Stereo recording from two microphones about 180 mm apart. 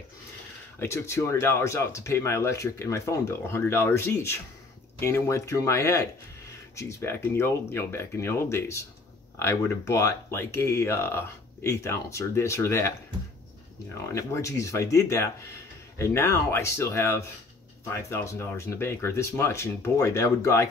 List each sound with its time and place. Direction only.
0.7 s speech: 15° left (ahead or behind)
14.1 s speech: 15° left (ahead or behind)